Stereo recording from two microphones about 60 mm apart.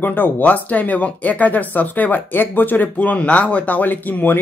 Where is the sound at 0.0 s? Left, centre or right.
Left.